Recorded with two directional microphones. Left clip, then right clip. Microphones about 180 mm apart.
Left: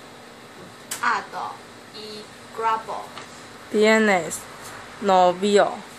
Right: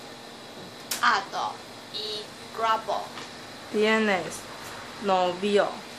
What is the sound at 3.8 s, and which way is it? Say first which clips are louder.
Speech: left 6 dB; 40° left (ahead or behind).